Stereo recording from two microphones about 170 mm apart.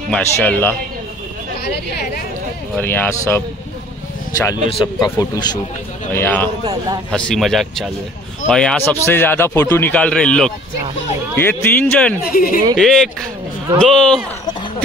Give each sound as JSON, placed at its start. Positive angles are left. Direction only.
{"t": 0.1, "sound": "a man's voice", "side_deg": 5}
{"t": 2.7, "sound": "a man's voice", "side_deg": 10}
{"t": 5.0, "sound": "speech", "side_deg": 20}
{"t": 6.1, "sound": "a man's voice", "side_deg": 10}
{"t": 12.3, "sound": "speech", "side_deg": 60}
{"t": 12.7, "sound": "speech", "side_deg": 0}